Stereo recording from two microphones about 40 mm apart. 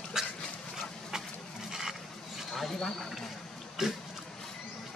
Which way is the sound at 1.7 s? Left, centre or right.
Centre.